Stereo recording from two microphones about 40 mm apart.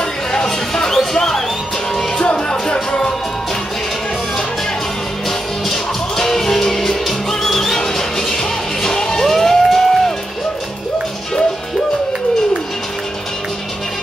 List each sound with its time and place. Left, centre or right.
0.0 s music: centre
5.7 s music: centre